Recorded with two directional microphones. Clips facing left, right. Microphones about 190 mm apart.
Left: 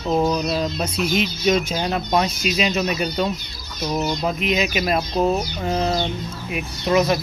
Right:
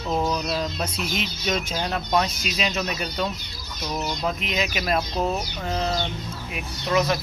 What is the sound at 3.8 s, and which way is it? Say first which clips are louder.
Speech: left 6 dB; 30° left (ahead or behind).